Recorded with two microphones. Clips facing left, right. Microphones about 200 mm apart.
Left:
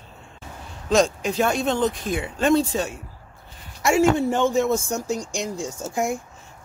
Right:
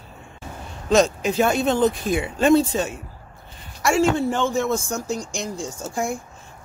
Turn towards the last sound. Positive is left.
turn(degrees=20)  # may be behind; listen again after turning